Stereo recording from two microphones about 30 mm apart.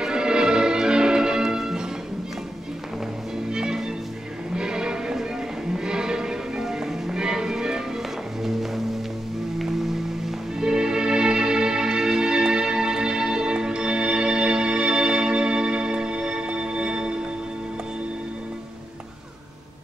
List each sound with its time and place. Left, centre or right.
0.0 s music: right
3.5 s music: right
8.5 s music: centre
10.6 s music: right